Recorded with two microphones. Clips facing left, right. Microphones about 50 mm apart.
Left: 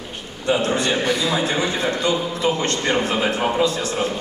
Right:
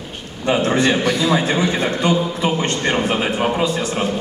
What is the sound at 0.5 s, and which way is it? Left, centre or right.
A man's voice, right.